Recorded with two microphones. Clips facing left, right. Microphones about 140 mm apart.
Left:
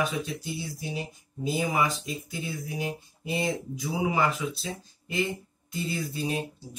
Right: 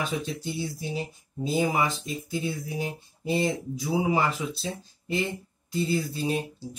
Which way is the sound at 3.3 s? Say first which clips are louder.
Right 3 dB; 30° right (ahead or behind).